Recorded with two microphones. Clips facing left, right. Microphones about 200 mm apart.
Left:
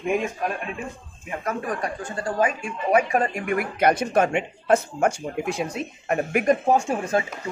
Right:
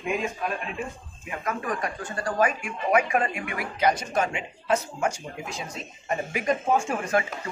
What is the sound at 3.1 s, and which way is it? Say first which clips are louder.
Speech: left 4 dB; 40° left (ahead or behind).